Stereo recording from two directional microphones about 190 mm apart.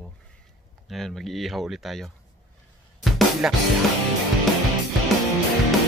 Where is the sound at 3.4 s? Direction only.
Centre (ahead or behind).